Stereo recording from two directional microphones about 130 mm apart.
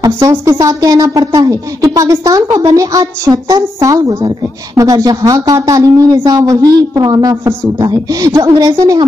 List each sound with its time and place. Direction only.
0.0 s speech: 25° right (ahead or behind)